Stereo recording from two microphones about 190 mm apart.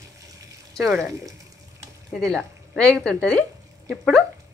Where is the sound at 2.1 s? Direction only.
5° left (ahead or behind).